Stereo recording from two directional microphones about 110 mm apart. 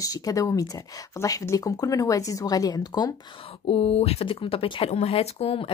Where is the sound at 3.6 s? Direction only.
65° left (ahead or behind).